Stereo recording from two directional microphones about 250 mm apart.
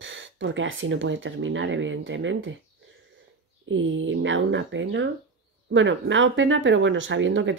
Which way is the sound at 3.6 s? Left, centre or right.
Right.